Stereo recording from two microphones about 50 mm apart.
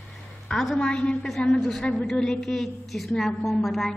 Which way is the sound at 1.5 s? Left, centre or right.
Centre.